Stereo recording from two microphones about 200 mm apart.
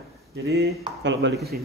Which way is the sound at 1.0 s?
65° right (ahead or behind).